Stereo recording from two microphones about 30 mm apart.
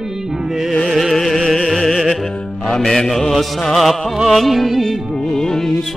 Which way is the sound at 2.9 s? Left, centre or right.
Centre.